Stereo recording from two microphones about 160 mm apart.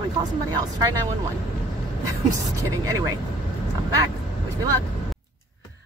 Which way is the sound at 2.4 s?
20° right (ahead or behind).